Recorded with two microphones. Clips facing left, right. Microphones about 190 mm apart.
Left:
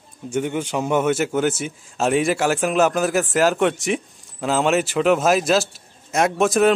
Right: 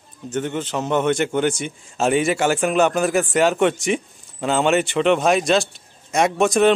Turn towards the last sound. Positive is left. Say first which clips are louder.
# right 1 dB
turn(degrees=0)  # may be behind; listen again after turning